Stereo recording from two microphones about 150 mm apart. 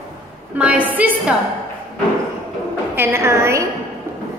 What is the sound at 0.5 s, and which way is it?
Speech, 10° right (ahead or behind).